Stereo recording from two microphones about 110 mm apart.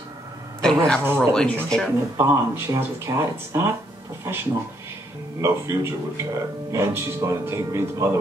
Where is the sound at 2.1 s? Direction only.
20° right (ahead or behind).